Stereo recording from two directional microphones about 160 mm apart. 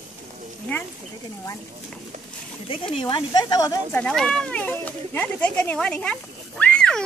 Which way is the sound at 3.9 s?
5° left (ahead or behind).